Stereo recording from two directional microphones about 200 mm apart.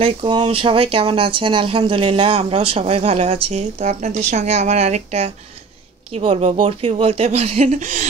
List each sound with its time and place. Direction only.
0.0 s speech: 25° right (ahead or behind)